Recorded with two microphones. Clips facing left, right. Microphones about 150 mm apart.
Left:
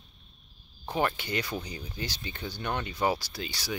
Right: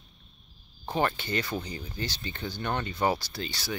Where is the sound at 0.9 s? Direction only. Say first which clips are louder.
Right 1 dB; 10° left (ahead or behind).